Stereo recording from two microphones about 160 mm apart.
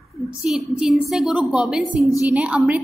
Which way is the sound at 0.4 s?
5° right (ahead or behind).